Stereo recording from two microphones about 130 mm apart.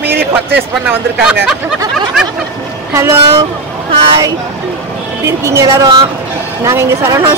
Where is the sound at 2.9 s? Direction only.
20° right (ahead or behind).